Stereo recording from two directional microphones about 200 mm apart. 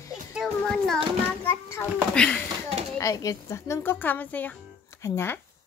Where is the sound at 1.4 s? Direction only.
5° left (ahead or behind).